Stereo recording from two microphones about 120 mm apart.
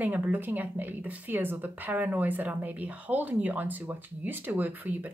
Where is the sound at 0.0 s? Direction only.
15° right (ahead or behind).